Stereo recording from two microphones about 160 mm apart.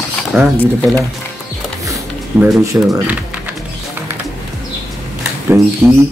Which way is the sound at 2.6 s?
20° right (ahead or behind).